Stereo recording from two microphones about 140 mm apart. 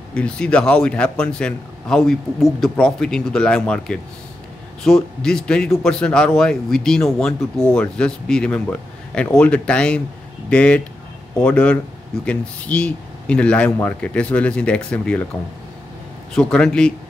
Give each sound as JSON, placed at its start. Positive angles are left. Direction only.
{"t": 0.1, "sound": "speech", "side_deg": 10}
{"t": 16.3, "sound": "speech", "side_deg": 5}